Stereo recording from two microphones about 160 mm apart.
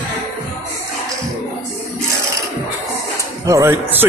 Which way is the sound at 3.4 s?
20° right (ahead or behind).